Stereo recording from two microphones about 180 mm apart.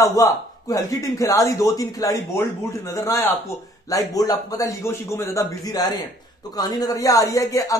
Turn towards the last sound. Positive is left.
turn(degrees=20)  # may be behind; listen again after turning